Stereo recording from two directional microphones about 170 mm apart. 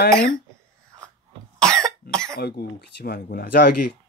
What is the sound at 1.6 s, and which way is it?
Cough, 5° left (ahead or behind).